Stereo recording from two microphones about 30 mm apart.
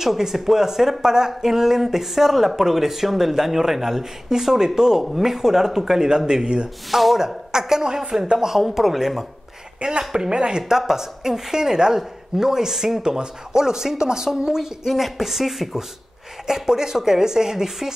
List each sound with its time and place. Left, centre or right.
0.0 s speech: centre
5.0 s speech: centre
6.1 s speech: right
6.9 s speech: centre
7.2 s speech: centre
9.8 s speech: right
10.8 s speech: centre
14.9 s speech: centre
16.4 s speech: centre